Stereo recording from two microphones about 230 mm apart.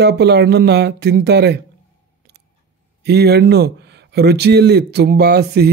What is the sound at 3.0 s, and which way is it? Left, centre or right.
A man's voice, right.